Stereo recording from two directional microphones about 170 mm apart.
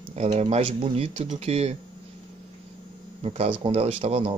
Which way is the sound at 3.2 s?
35° right (ahead or behind).